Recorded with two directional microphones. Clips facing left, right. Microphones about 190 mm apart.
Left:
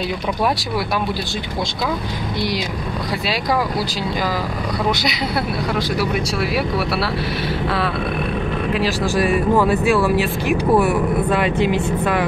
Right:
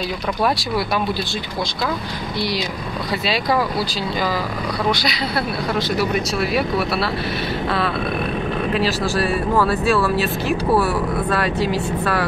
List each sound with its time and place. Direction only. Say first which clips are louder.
5.0 s speech: left 1 dB; 15° left (ahead or behind)
8.7 s speech: left 2 dB; 10° left (ahead or behind)